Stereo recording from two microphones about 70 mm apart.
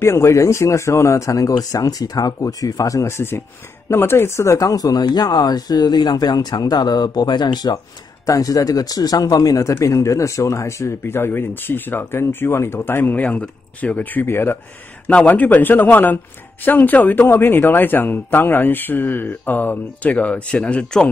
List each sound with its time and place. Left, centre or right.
0.0 s speech: left
4.6 s speech: left
8.3 s speech: left
14.2 s speech: left
15.0 s speech: centre